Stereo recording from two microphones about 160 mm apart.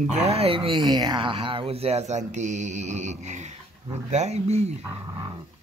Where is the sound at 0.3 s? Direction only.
35° right (ahead or behind).